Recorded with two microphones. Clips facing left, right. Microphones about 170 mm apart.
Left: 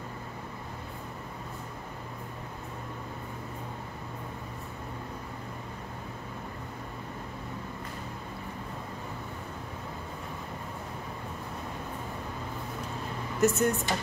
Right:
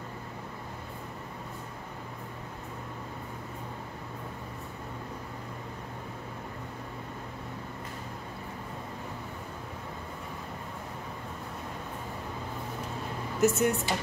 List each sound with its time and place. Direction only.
13.4 s speech: 5° right (ahead or behind)